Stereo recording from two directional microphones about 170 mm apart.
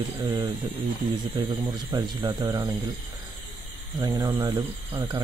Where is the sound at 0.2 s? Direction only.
25° right (ahead or behind).